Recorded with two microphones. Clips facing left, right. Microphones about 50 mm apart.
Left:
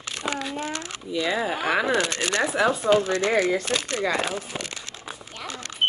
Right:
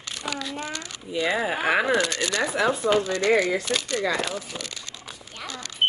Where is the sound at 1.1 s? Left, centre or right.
Centre.